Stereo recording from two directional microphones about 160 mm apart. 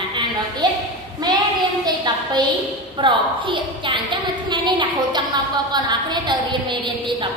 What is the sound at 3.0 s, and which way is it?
A woman's voice, 30° right (ahead or behind).